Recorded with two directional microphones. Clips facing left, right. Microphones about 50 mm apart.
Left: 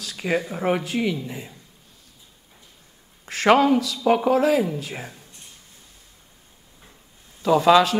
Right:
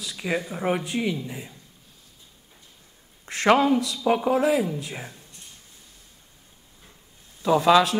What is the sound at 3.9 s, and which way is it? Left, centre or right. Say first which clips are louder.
Speech: left 3 dB; centre.